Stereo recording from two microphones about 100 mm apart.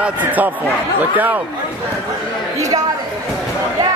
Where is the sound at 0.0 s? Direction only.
15° right (ahead or behind).